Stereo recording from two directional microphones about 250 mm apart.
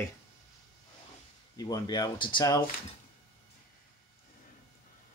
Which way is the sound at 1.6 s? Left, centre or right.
Centre.